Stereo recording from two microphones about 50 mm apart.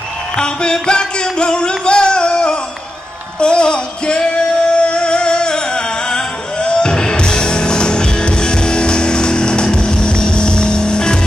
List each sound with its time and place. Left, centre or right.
0.4 s music: centre